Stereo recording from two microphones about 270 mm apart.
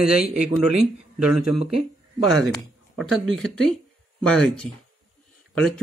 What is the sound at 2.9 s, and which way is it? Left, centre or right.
Speech, centre.